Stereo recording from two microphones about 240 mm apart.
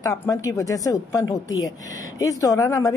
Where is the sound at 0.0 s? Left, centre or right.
Centre.